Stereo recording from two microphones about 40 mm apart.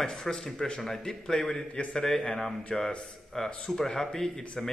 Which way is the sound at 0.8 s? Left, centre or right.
Centre.